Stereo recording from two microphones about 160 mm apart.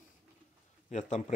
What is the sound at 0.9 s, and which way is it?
Speech, 50° left (ahead or behind).